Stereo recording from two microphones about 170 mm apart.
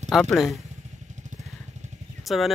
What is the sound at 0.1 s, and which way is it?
Speech, centre (ahead or behind).